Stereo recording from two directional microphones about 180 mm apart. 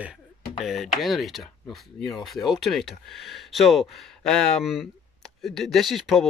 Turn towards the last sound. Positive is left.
turn(degrees=0)  # may be behind; listen again after turning